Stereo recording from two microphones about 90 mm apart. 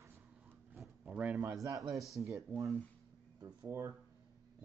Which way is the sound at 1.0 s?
15° right (ahead or behind).